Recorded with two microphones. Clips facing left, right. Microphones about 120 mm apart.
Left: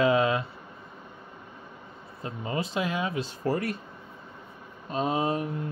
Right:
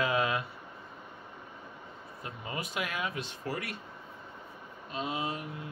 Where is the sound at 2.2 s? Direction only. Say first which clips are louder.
Left 8 dB; 30° left (ahead or behind).